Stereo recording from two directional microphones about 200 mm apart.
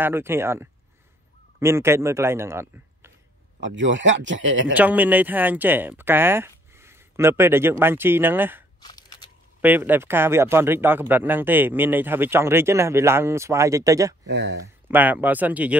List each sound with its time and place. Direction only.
0.0 s speech: 10° right (ahead or behind)
3.6 s speech: 70° right (ahead or behind)
4.7 s speech: 10° right (ahead or behind)
8.8 s a sound: 20° left (ahead or behind)
9.6 s speech: 10° right (ahead or behind)
14.2 s speech: 60° right (ahead or behind)
14.9 s speech: 10° right (ahead or behind)